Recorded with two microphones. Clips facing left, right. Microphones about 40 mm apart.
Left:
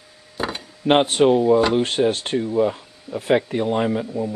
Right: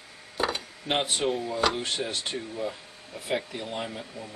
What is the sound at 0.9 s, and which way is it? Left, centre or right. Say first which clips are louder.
Speech: left 12 dB; left.